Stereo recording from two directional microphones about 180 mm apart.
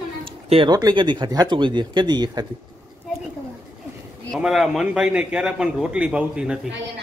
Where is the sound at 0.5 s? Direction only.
25° right (ahead or behind).